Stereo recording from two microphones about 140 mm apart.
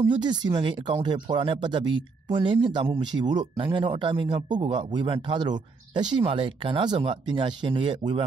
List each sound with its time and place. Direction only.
0.0 s speech: 35° right (ahead or behind)